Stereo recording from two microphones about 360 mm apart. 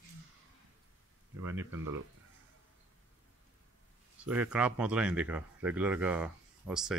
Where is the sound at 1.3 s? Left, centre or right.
Right.